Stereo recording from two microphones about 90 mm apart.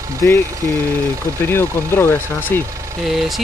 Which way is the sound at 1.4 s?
25° left (ahead or behind).